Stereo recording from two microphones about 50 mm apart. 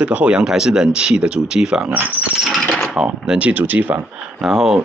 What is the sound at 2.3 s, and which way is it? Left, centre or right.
Speech, centre.